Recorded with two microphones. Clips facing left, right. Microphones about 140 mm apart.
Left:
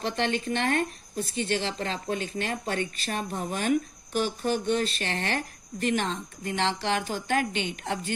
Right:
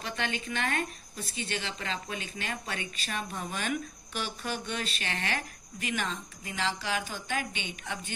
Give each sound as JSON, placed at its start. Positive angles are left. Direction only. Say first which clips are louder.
{"t": 0.7, "sound": "a woman's voice", "louder": "left 6 dB", "side_deg": 50}